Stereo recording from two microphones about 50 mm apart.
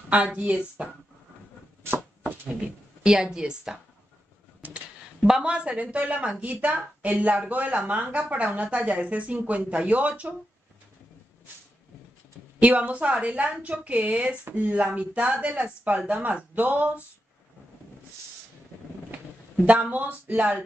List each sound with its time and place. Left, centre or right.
0.1 s speech: right
1.8 s chopping: right
3.0 s a woman's voice: centre
4.6 s a sound: right
5.4 s speech: right
12.6 s speech: right
19.6 s speech: right